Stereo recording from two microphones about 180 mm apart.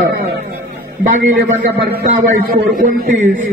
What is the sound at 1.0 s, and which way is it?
Speech, 50° right (ahead or behind).